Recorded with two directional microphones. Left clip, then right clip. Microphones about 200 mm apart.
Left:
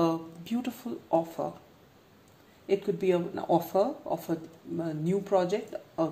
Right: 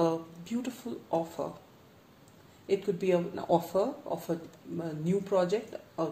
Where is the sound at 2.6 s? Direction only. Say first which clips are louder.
Left 2 dB; 25° left (ahead or behind).